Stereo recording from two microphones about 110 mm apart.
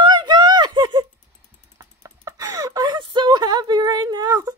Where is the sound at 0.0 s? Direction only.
40° right (ahead or behind).